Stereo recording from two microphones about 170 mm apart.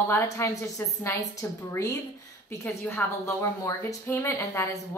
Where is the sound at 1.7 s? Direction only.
20° left (ahead or behind).